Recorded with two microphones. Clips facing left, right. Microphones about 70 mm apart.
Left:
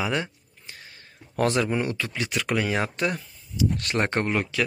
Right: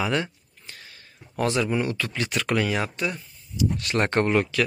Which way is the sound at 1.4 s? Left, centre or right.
Left.